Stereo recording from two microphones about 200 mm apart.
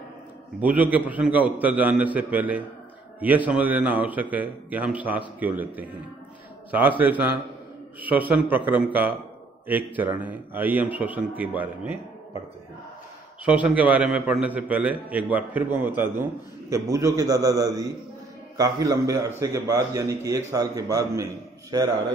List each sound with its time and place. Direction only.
0.6 s a man's voice: 5° right (ahead or behind)
13.5 s a man's voice: 5° right (ahead or behind)